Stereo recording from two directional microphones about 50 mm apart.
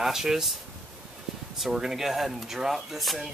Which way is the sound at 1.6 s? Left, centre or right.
Centre.